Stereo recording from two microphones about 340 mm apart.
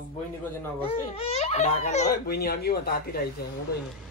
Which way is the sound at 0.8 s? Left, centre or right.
Centre.